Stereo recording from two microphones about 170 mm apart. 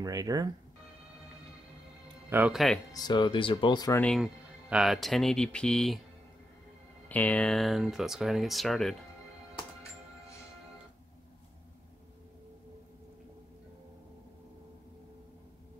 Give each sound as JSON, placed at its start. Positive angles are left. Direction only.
{"t": 0.0, "sound": "speech", "side_deg": -20}
{"t": 2.2, "sound": "speech", "side_deg": -10}
{"t": 2.5, "sound": "speech", "side_deg": 0}
{"t": 2.9, "sound": "speech", "side_deg": 25}
{"t": 4.0, "sound": "speech", "side_deg": 0}
{"t": 7.1, "sound": "speech", "side_deg": 10}